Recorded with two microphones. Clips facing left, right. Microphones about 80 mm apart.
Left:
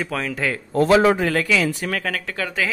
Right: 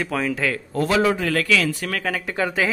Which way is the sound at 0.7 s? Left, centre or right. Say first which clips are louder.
Left 5 dB; left.